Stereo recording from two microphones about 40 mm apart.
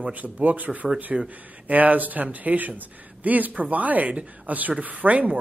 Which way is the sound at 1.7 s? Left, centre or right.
Right.